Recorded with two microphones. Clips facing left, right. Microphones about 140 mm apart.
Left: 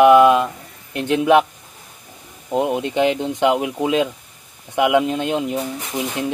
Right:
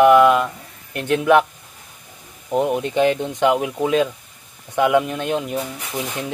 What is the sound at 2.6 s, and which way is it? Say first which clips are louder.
Speech: even; 15° left (ahead or behind).